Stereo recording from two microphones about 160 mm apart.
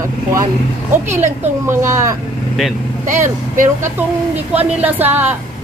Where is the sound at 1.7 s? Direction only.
15° right (ahead or behind).